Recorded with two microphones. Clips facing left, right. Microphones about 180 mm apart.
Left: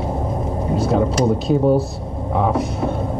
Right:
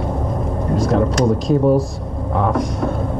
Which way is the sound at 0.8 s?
5° left (ahead or behind).